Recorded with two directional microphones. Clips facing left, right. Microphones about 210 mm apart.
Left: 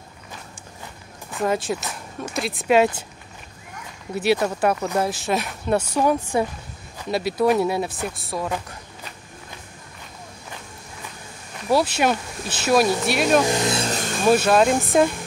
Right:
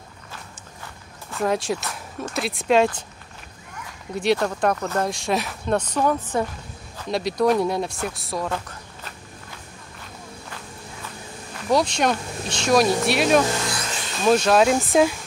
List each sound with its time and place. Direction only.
1.4 s speech: centre (ahead or behind)
4.1 s speech: 5° left (ahead or behind)
11.7 s speech: 5° left (ahead or behind)
13.4 s speech: 15° left (ahead or behind)
14.2 s speech: 5° left (ahead or behind)